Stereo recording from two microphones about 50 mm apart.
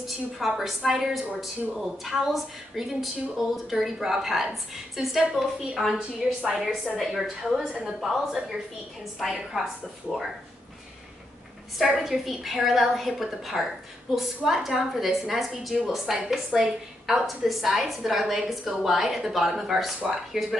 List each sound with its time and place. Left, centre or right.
0.0 s a woman's voice: centre
5.9 s a woman's voice: centre
6.6 s a woman's voice: centre
11.8 s a woman's voice: centre